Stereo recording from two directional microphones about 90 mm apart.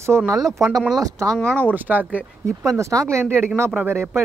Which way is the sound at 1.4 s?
15° left (ahead or behind).